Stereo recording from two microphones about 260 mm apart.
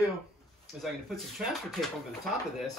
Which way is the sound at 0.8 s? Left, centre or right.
Centre.